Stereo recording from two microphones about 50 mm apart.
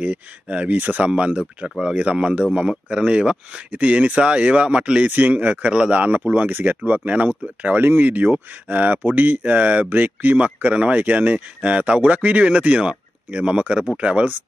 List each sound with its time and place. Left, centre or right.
0.0 s speech: right